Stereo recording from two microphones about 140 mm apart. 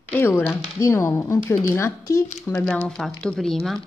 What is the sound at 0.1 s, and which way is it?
Speech, 15° left (ahead or behind).